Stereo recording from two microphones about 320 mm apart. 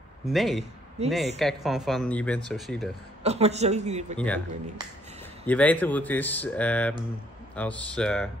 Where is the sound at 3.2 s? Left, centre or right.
Centre.